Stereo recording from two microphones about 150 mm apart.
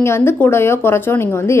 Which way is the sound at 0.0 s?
15° left (ahead or behind).